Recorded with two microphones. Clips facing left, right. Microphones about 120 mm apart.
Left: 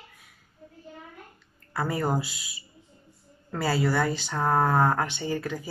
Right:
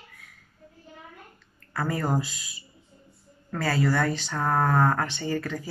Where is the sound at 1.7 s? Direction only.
20° left (ahead or behind).